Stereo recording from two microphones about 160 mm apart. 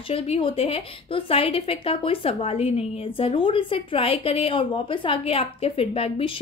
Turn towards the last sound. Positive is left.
turn(degrees=35)  # may be behind; listen again after turning